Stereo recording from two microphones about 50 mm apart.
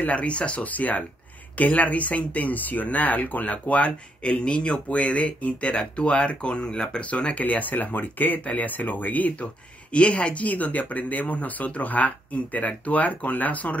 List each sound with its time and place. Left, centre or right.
0.0 s speech: left
9.9 s speech: left